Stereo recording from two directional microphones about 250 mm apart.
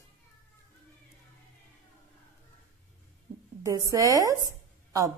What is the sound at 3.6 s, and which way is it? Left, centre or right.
Speech, centre.